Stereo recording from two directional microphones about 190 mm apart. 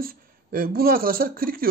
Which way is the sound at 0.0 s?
50° right (ahead or behind).